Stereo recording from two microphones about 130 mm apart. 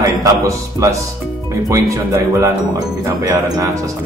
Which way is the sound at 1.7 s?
25° right (ahead or behind).